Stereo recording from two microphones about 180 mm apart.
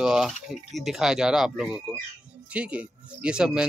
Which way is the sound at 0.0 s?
Centre (ahead or behind).